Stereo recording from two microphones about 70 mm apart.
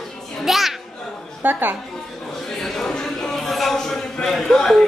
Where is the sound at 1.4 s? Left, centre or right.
Right.